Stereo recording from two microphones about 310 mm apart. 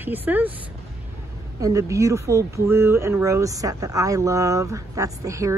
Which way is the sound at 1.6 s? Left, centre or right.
Centre.